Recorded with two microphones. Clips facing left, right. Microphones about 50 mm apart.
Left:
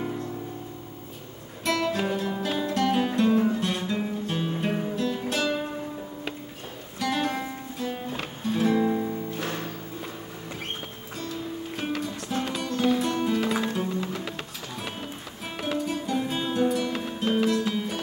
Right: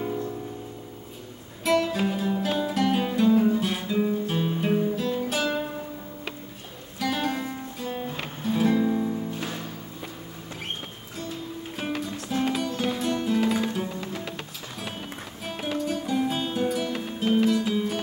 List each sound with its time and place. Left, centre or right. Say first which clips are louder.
1.6 s music: right 2 dB; centre
3.5 s guitar: right 2 dB; centre
7.0 s music: even; centre
8.7 s music: even; centre
11.7 s music: right 1 dB; centre
15.6 s music: even; centre